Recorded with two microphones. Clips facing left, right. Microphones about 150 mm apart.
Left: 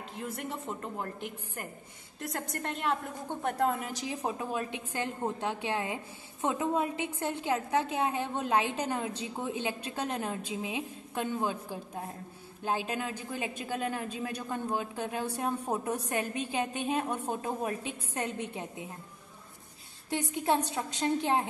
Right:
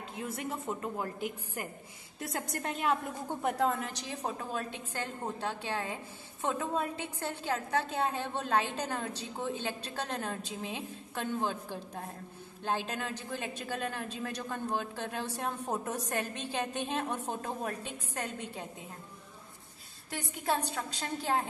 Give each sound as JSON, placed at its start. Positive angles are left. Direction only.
{"t": 0.1, "sound": "a woman's voice", "side_deg": 0}
{"t": 20.1, "sound": "a woman's voice", "side_deg": 20}